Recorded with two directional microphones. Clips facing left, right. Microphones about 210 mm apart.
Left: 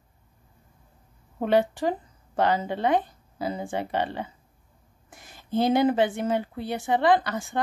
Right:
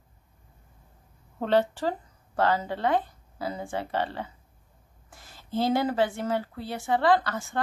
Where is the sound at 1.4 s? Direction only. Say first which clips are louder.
Left 2 dB; 15° left (ahead or behind).